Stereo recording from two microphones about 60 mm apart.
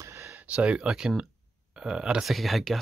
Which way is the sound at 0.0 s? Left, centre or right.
Right.